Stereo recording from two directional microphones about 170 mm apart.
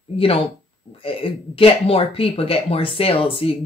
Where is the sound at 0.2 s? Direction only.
35° left (ahead or behind).